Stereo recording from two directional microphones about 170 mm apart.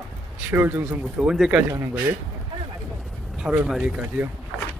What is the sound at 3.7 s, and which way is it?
Speech, 5° right (ahead or behind).